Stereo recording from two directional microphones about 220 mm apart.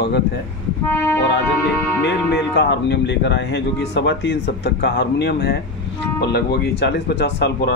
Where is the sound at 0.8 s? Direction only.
10° left (ahead or behind).